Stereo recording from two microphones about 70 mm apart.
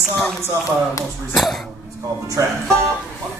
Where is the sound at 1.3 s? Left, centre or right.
Centre.